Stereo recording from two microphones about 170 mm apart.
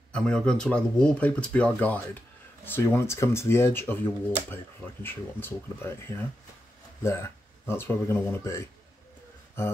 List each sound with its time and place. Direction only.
0.1 s speech: 5° left (ahead or behind)